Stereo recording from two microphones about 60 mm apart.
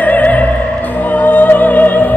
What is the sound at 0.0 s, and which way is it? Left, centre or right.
Music, left.